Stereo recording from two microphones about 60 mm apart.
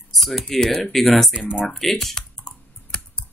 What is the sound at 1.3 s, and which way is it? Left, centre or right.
Speech, centre.